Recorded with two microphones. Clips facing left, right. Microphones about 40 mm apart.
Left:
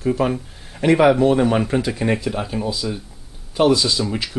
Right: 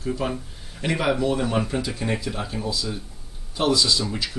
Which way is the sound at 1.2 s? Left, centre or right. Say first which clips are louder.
Left 8 dB; left.